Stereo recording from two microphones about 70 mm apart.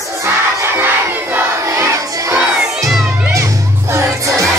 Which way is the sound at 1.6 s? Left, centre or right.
Right.